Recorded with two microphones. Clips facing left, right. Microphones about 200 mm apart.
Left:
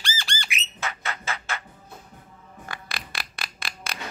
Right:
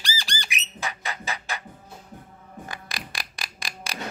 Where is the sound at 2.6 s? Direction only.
15° right (ahead or behind).